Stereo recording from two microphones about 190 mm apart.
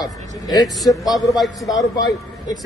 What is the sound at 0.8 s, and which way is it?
Speech, 20° left (ahead or behind).